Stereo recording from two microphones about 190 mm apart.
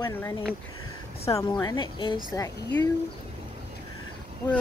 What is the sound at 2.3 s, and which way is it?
Speech, 15° left (ahead or behind).